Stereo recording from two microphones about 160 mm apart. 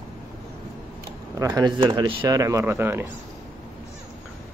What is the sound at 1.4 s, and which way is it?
Speech, 25° right (ahead or behind).